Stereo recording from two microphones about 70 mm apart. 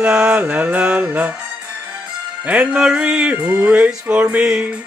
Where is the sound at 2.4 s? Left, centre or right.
Centre.